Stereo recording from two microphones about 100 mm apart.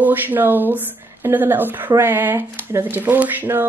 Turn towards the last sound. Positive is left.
turn(degrees=-20)  # may be behind; listen again after turning